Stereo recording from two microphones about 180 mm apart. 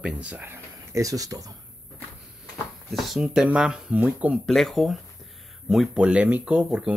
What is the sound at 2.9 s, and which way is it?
Speech, centre (ahead or behind).